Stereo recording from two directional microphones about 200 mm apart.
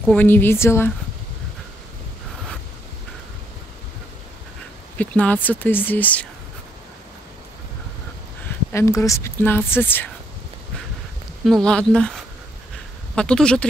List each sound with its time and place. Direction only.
0.1 s speech: 10° left (ahead or behind)
4.9 s speech: 5° left (ahead or behind)
8.7 s speech: 15° left (ahead or behind)
11.4 s speech: 5° left (ahead or behind)